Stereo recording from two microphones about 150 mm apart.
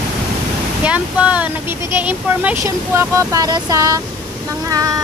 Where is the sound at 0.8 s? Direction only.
10° right (ahead or behind).